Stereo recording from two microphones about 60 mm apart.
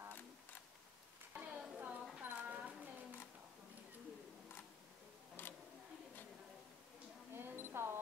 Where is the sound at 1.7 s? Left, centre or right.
Right.